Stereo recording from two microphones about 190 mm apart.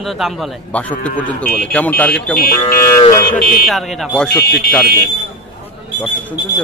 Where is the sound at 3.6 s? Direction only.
Centre (ahead or behind).